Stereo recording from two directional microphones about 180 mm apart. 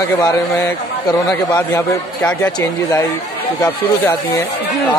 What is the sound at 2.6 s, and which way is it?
Speech, 20° left (ahead or behind).